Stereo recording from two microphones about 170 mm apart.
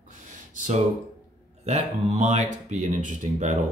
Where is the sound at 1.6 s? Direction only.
45° right (ahead or behind).